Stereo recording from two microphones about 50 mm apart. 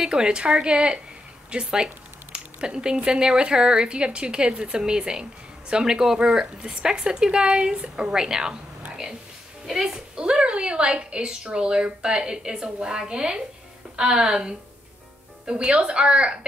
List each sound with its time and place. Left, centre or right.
0.0 s a woman's voice: centre
10.1 s a woman's voice: centre